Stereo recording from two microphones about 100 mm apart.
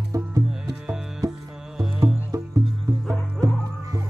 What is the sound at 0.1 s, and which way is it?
Music, 30° right (ahead or behind).